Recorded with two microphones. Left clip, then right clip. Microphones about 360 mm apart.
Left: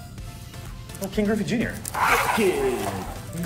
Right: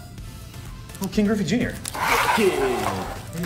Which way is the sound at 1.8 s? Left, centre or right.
Centre.